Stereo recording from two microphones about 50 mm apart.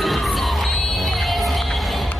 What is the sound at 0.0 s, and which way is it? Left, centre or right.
Crowd, centre.